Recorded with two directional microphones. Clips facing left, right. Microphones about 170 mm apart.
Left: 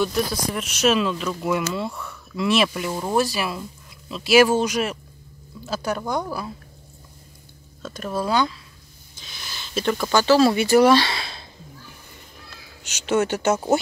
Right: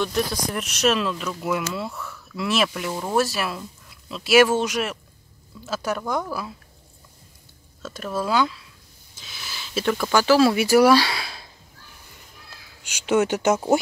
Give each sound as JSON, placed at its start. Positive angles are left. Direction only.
{"t": 0.0, "sound": "speech", "side_deg": 5}
{"t": 7.8, "sound": "speech", "side_deg": -5}
{"t": 12.8, "sound": "speech", "side_deg": -15}